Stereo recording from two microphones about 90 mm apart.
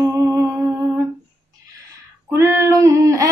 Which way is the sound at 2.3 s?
35° right (ahead or behind).